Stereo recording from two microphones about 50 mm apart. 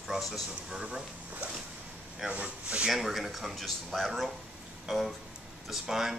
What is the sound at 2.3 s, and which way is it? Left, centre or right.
Speech, right.